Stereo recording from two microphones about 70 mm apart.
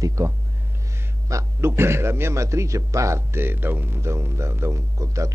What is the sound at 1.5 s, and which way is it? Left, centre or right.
A man's voice, right.